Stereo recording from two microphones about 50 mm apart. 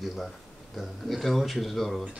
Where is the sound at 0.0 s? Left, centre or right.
Centre.